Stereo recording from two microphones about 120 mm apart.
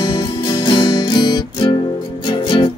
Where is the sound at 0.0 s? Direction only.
40° left (ahead or behind).